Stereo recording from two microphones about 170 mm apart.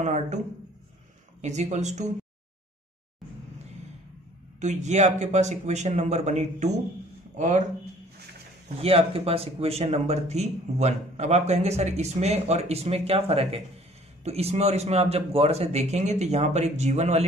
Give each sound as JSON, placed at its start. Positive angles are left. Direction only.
{"t": 0.0, "sound": "speech", "side_deg": -45}
{"t": 1.4, "sound": "speech", "side_deg": -45}
{"t": 4.6, "sound": "speech", "side_deg": -45}
{"t": 8.6, "sound": "speech", "side_deg": -35}